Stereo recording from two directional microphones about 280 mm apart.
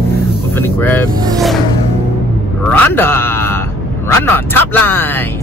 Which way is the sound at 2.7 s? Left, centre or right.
Centre.